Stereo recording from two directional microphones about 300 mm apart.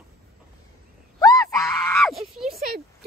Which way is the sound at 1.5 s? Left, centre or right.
Centre.